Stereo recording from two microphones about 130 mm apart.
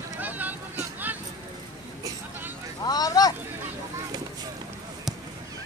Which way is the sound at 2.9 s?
30° left (ahead or behind).